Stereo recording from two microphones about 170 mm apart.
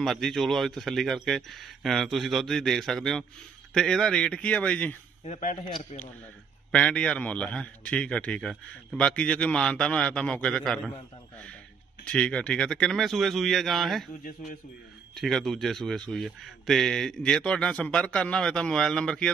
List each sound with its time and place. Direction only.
0.0 s speech: centre (ahead or behind)
5.2 s a man's voice: 45° left (ahead or behind)
6.7 s a man's voice: 5° left (ahead or behind)
12.0 s speech: 5° left (ahead or behind)
15.1 s speech: centre (ahead or behind)